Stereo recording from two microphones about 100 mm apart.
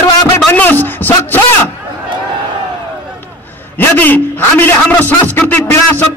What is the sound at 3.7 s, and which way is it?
A man's voice, 20° left (ahead or behind).